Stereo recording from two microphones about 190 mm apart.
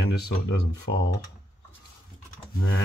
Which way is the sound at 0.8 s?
70° left (ahead or behind).